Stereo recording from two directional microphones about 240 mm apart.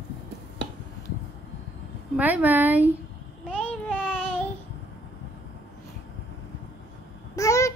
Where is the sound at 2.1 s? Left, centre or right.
Centre.